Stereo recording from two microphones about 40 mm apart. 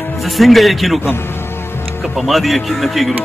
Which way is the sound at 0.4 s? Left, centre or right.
Centre.